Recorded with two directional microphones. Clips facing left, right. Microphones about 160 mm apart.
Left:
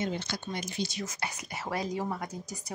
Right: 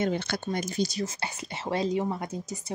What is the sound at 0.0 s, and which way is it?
Speech, 60° right (ahead or behind).